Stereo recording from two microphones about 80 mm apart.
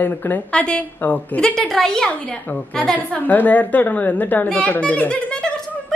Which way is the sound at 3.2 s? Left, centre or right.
Left.